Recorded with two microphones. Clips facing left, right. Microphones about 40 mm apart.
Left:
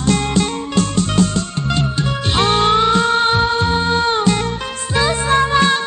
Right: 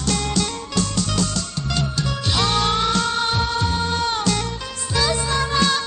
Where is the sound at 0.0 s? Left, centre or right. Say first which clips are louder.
Left 6 dB; left.